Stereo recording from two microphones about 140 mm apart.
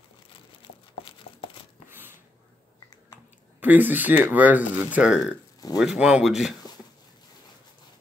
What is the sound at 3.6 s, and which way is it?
Speech, 10° right (ahead or behind).